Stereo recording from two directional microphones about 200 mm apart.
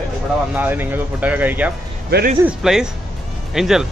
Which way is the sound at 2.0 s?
55° right (ahead or behind).